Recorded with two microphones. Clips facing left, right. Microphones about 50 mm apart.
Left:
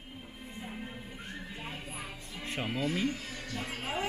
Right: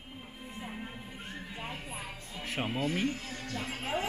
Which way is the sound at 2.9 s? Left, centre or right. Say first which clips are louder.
Even; right.